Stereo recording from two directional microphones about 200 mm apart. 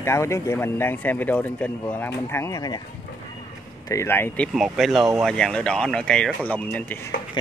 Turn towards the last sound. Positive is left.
turn(degrees=10)  # may be behind; listen again after turning